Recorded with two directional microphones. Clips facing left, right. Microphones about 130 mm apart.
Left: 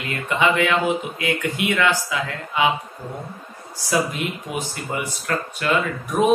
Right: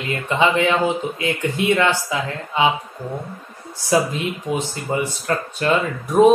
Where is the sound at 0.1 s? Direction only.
30° right (ahead or behind).